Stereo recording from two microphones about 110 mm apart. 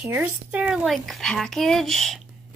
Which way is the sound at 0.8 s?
Centre (ahead or behind).